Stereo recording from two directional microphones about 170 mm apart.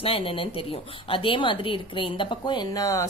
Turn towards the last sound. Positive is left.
turn(degrees=20)  # may be behind; listen again after turning